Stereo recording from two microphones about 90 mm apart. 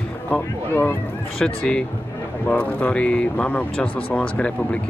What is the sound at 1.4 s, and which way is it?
Speech, 10° left (ahead or behind).